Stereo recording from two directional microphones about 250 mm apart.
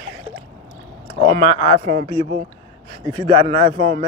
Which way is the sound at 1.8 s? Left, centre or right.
Right.